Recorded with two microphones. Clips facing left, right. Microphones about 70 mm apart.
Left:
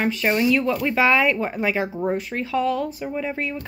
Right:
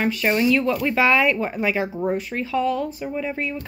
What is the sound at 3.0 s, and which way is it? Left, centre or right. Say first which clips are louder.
Speech: even; left.